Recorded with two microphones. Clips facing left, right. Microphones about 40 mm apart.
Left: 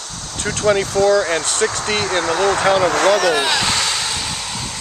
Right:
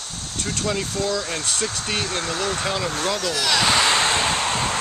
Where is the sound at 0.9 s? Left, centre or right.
Left.